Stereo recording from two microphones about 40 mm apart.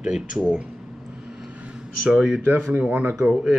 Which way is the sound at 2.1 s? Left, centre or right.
Right.